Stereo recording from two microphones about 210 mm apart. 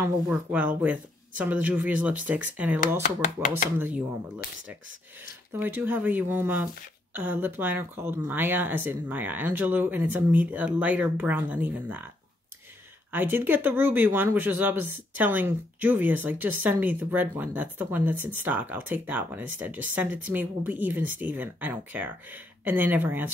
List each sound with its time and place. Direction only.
0.3 s speech: 5° right (ahead or behind)
3.0 s speech: 40° left (ahead or behind)
5.5 s speech: 10° right (ahead or behind)
13.1 s speech: 10° right (ahead or behind)